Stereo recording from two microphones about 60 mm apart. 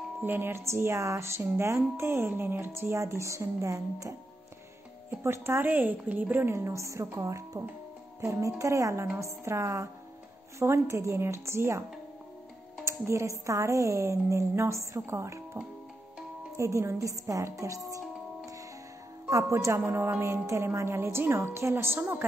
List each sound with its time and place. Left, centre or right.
0.2 s speech: right
0.6 s speech: right
5.2 s speech: right
5.7 s speech: right
6.4 s a woman's voice: right
12.8 s a woman's voice: right
19.2 s speech: right
19.8 s speech: right